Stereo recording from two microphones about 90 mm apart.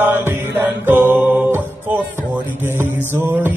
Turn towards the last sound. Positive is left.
turn(degrees=-20)  # may be behind; listen again after turning